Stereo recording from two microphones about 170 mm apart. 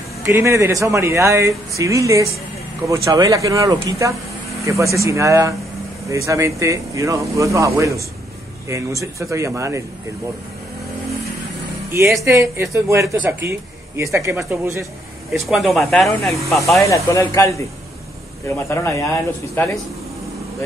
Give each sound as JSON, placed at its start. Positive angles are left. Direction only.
{"t": 0.2, "sound": "speech", "side_deg": -15}
{"t": 9.0, "sound": "speech", "side_deg": -15}
{"t": 12.3, "sound": "speech", "side_deg": -15}
{"t": 15.3, "sound": "speech", "side_deg": 0}
{"t": 16.8, "sound": "speech", "side_deg": 20}